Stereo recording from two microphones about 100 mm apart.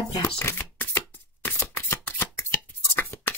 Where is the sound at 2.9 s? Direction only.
20° left (ahead or behind).